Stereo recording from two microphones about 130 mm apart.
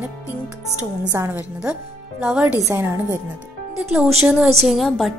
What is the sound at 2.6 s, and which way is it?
Speech, 25° right (ahead or behind).